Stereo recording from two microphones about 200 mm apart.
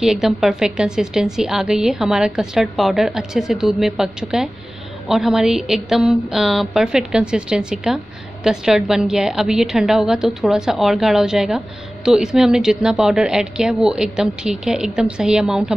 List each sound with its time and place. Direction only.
0.0 s a woman's voice: centre (ahead or behind)